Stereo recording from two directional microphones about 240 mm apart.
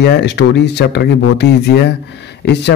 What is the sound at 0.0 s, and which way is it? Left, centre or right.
A man's voice, left.